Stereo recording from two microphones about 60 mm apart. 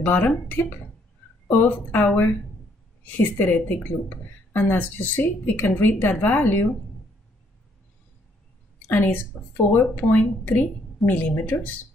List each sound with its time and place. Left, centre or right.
0.0 s speech: left
8.8 s speech: left